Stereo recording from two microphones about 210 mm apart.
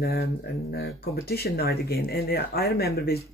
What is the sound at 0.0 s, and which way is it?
Speech, 50° left (ahead or behind).